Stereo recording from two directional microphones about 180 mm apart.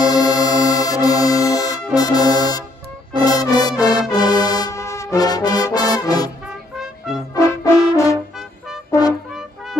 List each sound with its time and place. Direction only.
0.0 s music: 20° left (ahead or behind)
2.0 s brass instrument: 20° left (ahead or behind)
3.2 s music: 20° left (ahead or behind)
6.4 s music: centre (ahead or behind)
7.3 s brass instrument: 15° left (ahead or behind)